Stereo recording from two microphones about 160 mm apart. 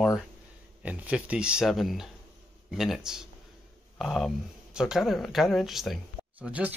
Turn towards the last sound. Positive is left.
turn(degrees=-10)  # may be behind; listen again after turning